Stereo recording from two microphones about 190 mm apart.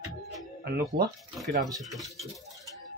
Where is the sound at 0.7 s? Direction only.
60° right (ahead or behind).